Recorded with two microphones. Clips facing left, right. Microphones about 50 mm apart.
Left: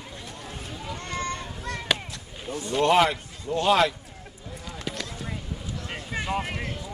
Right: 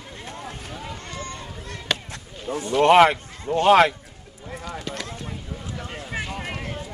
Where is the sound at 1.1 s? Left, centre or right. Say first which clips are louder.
Left 3 dB; left.